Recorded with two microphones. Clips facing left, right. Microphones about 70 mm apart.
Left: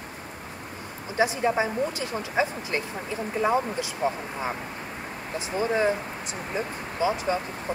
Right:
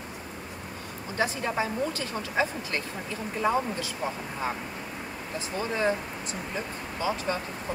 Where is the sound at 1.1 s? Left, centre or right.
Centre.